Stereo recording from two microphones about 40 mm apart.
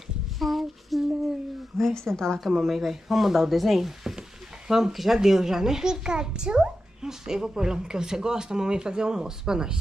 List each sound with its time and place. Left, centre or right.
0.4 s child singing: centre
1.8 s a woman's voice: centre
2.7 s speech: centre